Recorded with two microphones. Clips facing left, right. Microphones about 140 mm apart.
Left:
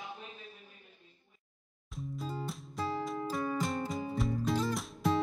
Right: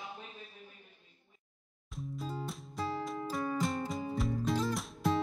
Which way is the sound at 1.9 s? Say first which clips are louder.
Left 1 dB; centre (ahead or behind).